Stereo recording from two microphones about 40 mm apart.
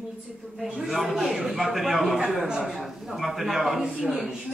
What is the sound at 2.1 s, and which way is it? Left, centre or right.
Speech, right.